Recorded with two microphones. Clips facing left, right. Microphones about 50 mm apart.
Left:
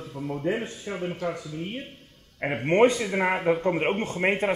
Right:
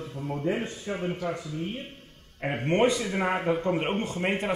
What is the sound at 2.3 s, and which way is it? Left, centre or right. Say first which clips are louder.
A man's voice: left 4 dB; left.